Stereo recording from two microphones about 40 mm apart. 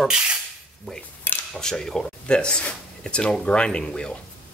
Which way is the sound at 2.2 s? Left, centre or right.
Left.